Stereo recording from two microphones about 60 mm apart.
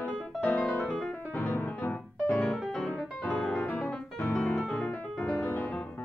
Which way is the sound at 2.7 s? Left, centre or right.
Centre.